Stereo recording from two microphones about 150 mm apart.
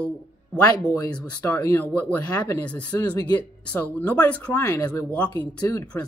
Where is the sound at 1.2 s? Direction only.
10° left (ahead or behind).